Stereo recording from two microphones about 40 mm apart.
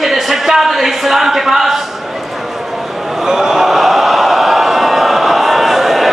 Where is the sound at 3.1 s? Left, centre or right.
Centre.